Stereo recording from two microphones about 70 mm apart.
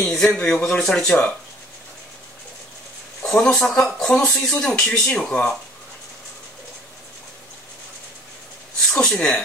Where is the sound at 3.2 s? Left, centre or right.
Centre.